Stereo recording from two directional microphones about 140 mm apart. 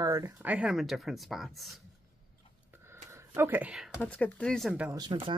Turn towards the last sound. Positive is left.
turn(degrees=-30)  # may be behind; listen again after turning